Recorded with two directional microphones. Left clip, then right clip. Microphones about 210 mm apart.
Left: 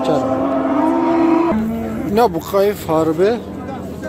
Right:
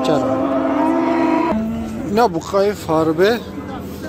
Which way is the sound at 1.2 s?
50° left (ahead or behind).